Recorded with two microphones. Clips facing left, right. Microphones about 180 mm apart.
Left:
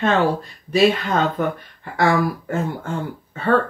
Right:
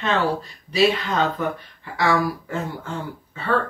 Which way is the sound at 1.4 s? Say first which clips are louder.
Left 3 dB; 50° left (ahead or behind).